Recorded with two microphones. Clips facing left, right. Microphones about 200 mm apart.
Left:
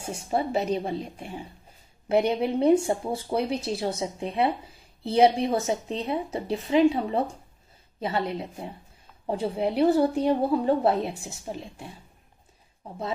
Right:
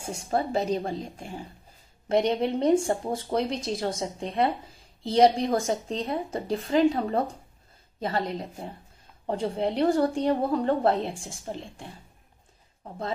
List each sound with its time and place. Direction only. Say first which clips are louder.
0.1 s a woman's voice: even; 10° left (ahead or behind)
8.0 s a woman's voice: left 1 dB; 5° left (ahead or behind)